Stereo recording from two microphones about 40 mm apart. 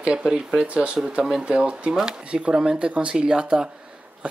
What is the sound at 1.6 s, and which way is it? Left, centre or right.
Speech, right.